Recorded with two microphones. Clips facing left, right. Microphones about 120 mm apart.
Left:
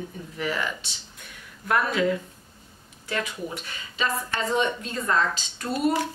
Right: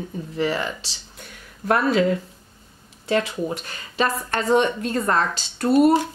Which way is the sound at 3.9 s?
55° right (ahead or behind).